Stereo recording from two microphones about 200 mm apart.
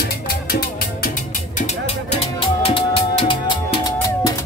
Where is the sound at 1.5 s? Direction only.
35° left (ahead or behind).